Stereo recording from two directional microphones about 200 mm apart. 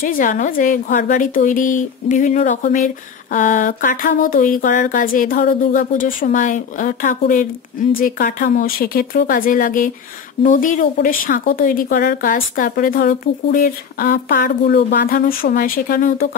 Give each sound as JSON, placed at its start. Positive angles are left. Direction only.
{"t": 0.0, "sound": "a woman's voice", "side_deg": 45}